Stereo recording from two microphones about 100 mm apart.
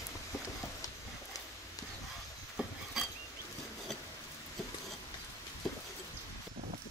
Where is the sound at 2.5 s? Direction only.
Centre (ahead or behind).